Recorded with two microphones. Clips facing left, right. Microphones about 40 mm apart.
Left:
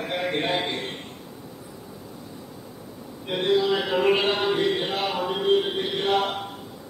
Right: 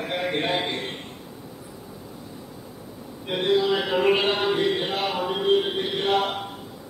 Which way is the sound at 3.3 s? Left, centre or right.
Centre.